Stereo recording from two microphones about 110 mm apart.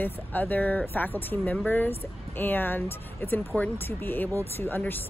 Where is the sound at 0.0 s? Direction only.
15° left (ahead or behind).